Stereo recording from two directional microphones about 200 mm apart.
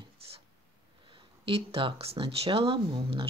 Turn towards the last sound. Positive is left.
turn(degrees=-25)  # may be behind; listen again after turning